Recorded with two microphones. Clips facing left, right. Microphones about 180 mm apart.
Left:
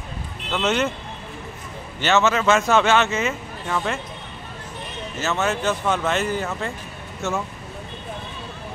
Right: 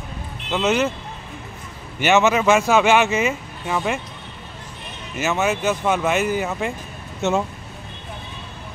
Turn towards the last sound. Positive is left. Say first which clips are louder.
# right 5 dB
turn(degrees=-20)  # may be behind; listen again after turning